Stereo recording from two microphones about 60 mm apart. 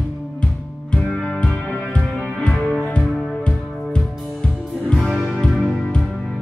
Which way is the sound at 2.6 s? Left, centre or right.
Centre.